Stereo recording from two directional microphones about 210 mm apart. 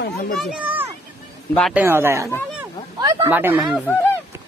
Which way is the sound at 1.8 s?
10° right (ahead or behind).